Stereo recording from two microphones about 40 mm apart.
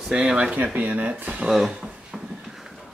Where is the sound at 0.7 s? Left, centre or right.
Right.